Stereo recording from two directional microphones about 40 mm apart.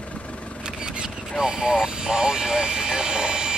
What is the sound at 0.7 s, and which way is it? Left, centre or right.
Single-lens reflex camera, centre.